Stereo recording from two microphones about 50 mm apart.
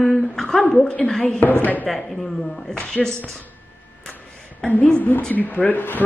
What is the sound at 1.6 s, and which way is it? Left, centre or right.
Speech, left.